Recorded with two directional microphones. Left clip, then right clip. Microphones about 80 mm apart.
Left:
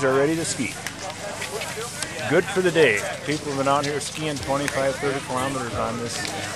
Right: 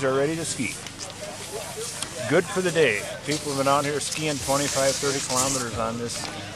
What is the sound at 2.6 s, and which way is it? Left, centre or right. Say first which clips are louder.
Speech: left 3 dB; centre.